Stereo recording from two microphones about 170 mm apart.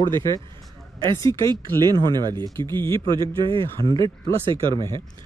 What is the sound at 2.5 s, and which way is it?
Speech, 15° left (ahead or behind).